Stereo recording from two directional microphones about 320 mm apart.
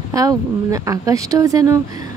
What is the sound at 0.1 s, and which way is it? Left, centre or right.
Speech, centre.